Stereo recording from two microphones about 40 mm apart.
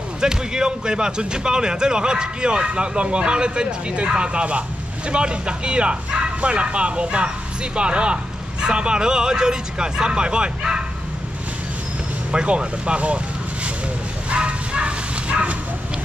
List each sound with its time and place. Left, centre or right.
0.2 s speech: centre
12.3 s speech: right
14.3 s bow-wow: right